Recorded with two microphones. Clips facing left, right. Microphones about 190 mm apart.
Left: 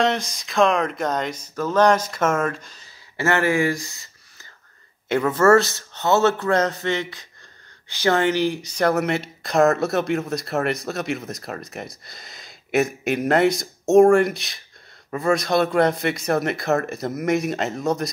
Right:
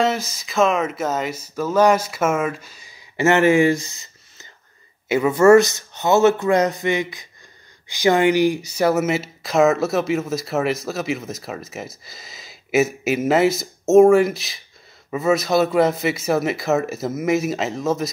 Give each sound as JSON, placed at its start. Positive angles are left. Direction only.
{"t": 0.0, "sound": "speech", "side_deg": -5}
{"t": 3.2, "sound": "speech", "side_deg": -20}
{"t": 5.0, "sound": "speech", "side_deg": -10}